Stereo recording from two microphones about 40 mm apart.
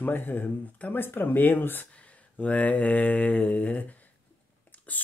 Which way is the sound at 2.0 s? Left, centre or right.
Left.